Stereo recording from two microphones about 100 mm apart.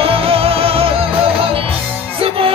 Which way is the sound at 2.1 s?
70° right (ahead or behind).